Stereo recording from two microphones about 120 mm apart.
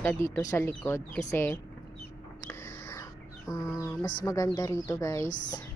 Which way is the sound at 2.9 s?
25° left (ahead or behind).